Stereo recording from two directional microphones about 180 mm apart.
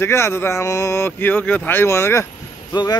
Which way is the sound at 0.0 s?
15° left (ahead or behind).